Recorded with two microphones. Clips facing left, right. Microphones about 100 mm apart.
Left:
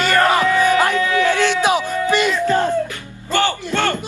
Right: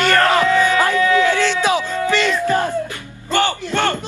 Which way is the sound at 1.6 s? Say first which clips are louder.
Left 1 dB; 15° left (ahead or behind).